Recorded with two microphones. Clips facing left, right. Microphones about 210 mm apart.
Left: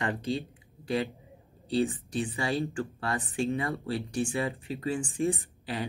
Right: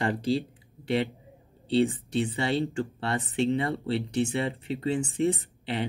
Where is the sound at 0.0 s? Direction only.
30° right (ahead or behind).